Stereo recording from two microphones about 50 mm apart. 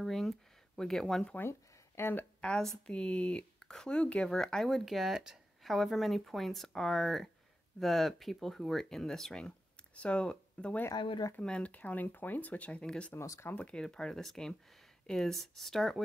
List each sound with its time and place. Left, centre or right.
0.0 s speech: centre
1.4 s a sound: left
2.4 s speech: centre
5.6 s speech: centre
9.9 s speech: left
11.7 s speech: left; by 13.1 s centre
13.2 s speech: left
13.6 s speech: left
13.8 s speech: centre